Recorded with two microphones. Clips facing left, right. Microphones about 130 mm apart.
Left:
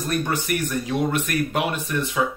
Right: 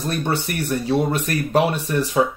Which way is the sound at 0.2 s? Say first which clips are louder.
Right 1 dB; 30° right (ahead or behind).